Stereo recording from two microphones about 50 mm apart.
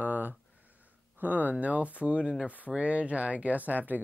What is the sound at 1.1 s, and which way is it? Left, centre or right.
Speech, right.